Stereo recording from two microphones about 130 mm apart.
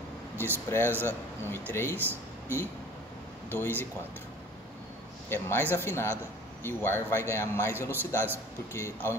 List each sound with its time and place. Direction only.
0.7 s speech: 15° left (ahead or behind)
2.0 s a sound: 15° right (ahead or behind)
3.4 s speech: 15° left (ahead or behind)
5.3 s a man's voice: 15° left (ahead or behind)